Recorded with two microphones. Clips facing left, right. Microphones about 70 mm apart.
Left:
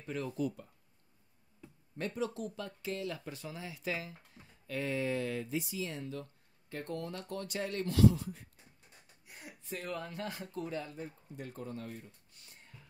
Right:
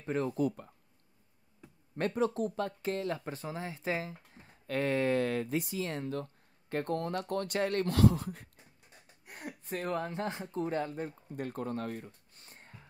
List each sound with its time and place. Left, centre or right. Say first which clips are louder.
0.0 s speech: right 5 dB; right
2.0 s speech: right 6 dB; right
4.6 s speech: right 5 dB; right
10.8 s speech: right 7 dB; right
12.4 s music: right 3 dB; right